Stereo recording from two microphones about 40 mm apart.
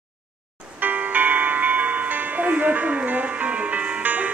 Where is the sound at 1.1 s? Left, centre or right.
Right.